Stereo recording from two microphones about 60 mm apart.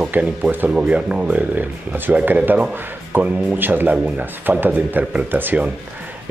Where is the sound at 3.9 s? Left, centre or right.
Centre.